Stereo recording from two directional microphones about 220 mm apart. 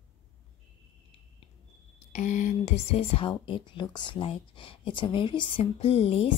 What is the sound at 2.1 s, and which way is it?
A woman's voice, 35° left (ahead or behind).